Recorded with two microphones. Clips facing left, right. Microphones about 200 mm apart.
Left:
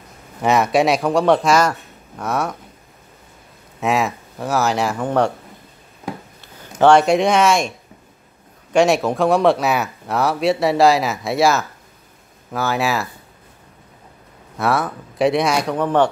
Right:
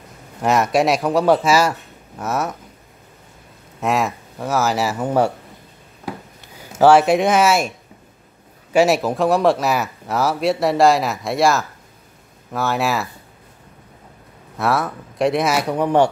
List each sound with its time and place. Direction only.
0.4 s speech: centre (ahead or behind)
3.8 s speech: centre (ahead or behind)
6.6 s speech: 5° right (ahead or behind)
8.7 s speech: 5° right (ahead or behind)
14.6 s speech: centre (ahead or behind)